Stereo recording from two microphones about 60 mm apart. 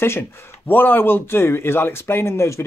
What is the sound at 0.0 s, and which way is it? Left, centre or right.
Speech, left.